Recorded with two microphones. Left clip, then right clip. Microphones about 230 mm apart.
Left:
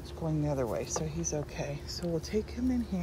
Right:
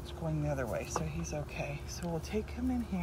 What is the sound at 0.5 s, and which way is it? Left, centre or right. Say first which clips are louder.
Speech: left 3 dB; centre.